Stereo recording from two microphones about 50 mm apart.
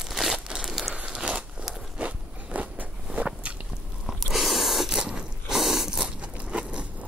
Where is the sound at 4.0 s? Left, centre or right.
Centre.